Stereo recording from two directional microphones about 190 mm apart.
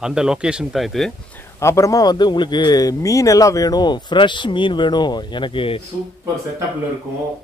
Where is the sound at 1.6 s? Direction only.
15° left (ahead or behind).